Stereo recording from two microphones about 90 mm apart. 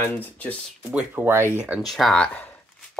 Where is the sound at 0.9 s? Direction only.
20° right (ahead or behind).